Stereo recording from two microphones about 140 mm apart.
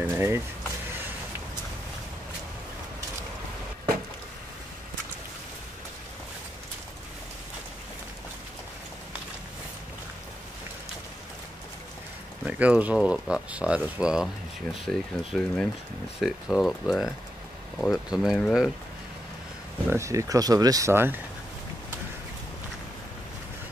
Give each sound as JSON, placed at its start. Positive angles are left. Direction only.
{"t": 0.0, "sound": "speech", "side_deg": -15}
{"t": 12.4, "sound": "speech", "side_deg": -10}
{"t": 14.9, "sound": "speech", "side_deg": 5}
{"t": 19.9, "sound": "speech", "side_deg": -20}